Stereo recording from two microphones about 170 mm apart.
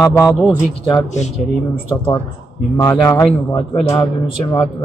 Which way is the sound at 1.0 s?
45° left (ahead or behind).